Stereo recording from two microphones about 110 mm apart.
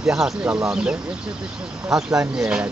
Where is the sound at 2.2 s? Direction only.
10° right (ahead or behind).